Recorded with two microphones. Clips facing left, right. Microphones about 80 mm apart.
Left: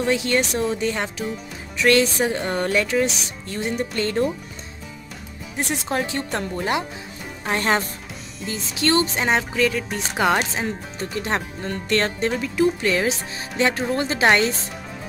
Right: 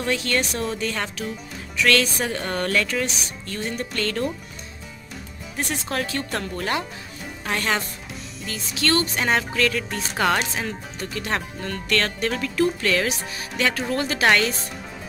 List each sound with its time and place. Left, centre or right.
0.0 s speech: centre
5.7 s speech: centre
7.5 s a woman's voice: left
12.3 s speech: centre